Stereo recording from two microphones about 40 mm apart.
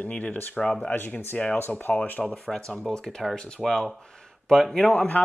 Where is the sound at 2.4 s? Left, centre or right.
Centre.